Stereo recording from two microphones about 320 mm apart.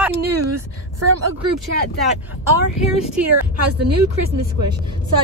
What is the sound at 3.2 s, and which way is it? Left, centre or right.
Speech, right.